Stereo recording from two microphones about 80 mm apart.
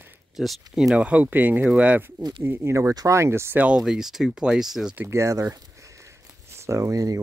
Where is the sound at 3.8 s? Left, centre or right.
Centre.